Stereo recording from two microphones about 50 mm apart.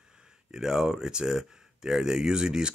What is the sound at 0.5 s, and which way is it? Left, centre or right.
Speech, centre.